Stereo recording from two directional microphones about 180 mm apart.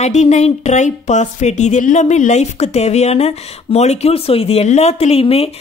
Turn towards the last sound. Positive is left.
turn(degrees=35)  # may be behind; listen again after turning